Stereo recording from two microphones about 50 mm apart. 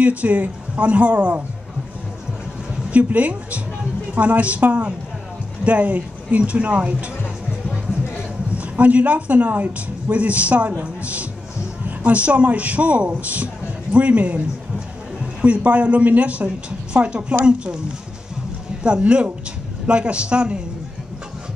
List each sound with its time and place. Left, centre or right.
0.0 s speech: right
2.9 s speech: right
8.5 s speech: right
15.4 s speech: right
18.8 s speech: right